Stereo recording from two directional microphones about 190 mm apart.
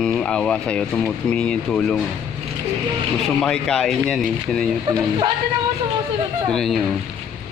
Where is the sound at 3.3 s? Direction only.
5° left (ahead or behind).